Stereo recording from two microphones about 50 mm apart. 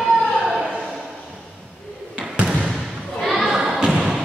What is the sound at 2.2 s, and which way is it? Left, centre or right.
Basketball bounce, centre.